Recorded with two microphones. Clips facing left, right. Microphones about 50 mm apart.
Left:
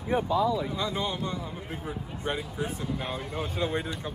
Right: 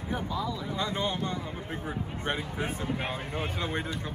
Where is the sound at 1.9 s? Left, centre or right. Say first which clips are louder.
Even; right.